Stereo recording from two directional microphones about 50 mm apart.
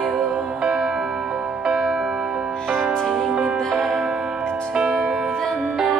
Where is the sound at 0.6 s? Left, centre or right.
Centre.